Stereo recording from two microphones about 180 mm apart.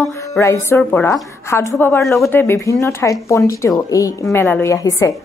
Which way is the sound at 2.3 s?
15° left (ahead or behind).